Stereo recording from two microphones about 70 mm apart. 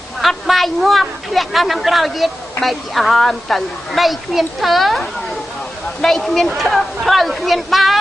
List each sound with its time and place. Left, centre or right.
0.2 s a woman's voice: centre